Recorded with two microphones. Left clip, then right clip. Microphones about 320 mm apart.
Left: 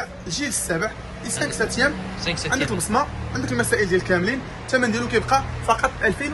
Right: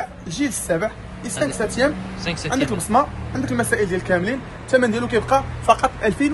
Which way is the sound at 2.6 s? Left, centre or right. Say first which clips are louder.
Right 4 dB; right.